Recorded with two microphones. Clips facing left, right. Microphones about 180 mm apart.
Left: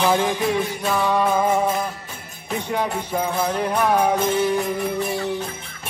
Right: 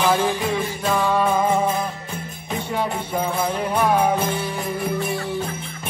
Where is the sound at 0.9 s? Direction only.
10° left (ahead or behind).